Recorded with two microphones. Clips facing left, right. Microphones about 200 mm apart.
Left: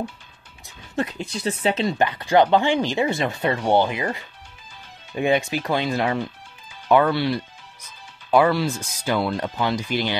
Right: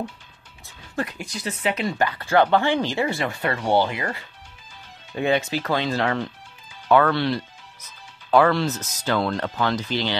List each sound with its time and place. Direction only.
0.9 s speech: 25° left (ahead or behind)